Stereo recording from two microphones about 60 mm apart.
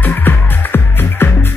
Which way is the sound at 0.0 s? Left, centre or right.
Left.